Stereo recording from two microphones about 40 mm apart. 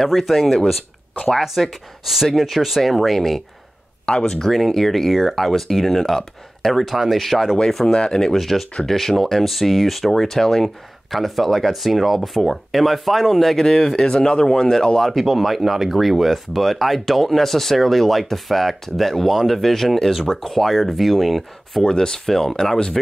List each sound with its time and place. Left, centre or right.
0.2 s speech: centre
4.1 s speech: centre
4.5 s speech: centre
7.5 s speech: centre
7.9 s speech: left
8.4 s speech: centre
15.0 s speech: centre
21.8 s speech: centre